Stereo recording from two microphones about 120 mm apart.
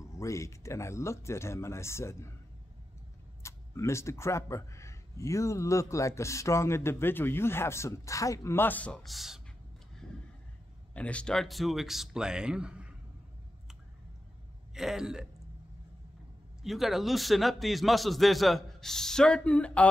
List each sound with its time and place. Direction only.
0.2 s speech: 25° left (ahead or behind)
3.4 s speech: 25° left (ahead or behind); by 9.4 s centre (ahead or behind)
11.0 s speech: 10° left (ahead or behind); by 12.9 s 10° right (ahead or behind)
14.7 s speech: 5° right (ahead or behind)
16.6 s speech: centre (ahead or behind)